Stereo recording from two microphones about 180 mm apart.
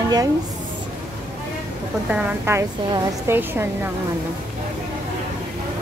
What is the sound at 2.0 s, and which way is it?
A woman's voice, 10° right (ahead or behind).